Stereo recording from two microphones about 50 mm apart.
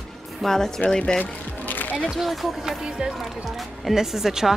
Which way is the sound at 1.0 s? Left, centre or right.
Left.